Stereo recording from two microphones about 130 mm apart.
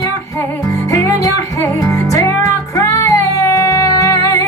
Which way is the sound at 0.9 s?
25° left (ahead or behind).